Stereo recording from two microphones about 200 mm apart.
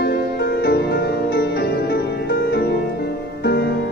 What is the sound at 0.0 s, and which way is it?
Music, 55° left (ahead or behind).